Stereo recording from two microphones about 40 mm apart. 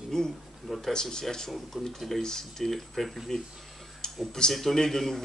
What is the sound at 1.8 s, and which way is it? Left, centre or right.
Speech, centre.